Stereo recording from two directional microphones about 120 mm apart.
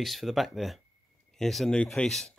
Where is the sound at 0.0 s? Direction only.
Centre (ahead or behind).